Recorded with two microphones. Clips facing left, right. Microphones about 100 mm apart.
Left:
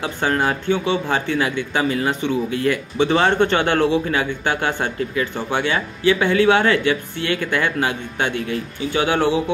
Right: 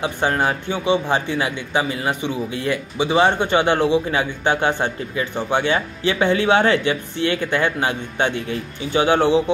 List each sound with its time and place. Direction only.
0.0 s a man's voice: 25° right (ahead or behind)